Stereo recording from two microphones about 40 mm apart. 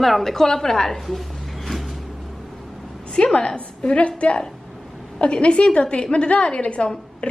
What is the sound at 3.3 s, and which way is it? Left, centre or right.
A woman's voice, left.